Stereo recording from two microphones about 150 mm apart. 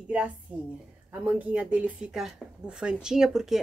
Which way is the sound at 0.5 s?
10° right (ahead or behind).